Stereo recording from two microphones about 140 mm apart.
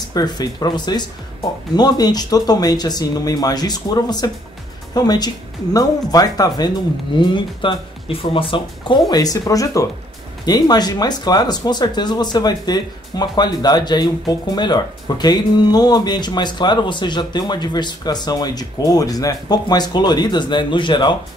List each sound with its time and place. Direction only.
0.1 s speech: 30° left (ahead or behind)